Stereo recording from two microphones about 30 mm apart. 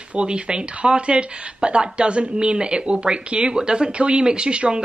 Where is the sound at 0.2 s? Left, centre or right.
Right.